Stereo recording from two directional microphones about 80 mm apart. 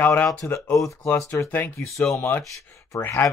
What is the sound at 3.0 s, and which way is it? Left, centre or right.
Speech, left.